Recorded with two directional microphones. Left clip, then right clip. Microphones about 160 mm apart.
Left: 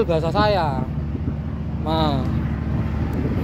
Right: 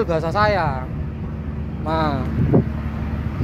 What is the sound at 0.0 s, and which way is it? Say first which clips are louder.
Speech: right 1 dB; 30° left (ahead or behind).